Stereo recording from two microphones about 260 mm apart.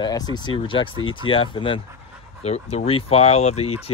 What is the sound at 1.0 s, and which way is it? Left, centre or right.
Speech, left.